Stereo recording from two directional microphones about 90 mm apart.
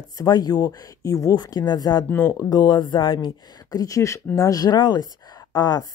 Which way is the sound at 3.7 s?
40° left (ahead or behind).